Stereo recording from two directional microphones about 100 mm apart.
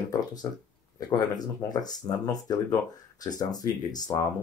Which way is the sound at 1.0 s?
40° left (ahead or behind).